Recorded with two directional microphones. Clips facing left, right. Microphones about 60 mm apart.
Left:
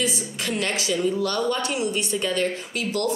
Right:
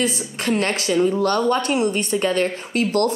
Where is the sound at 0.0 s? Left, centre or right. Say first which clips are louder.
Right 4 dB; right.